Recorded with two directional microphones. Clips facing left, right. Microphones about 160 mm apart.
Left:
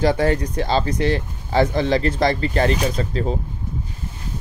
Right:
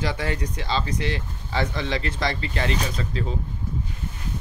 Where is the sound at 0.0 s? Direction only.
45° left (ahead or behind).